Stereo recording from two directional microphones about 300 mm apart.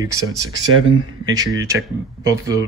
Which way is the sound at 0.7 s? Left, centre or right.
Right.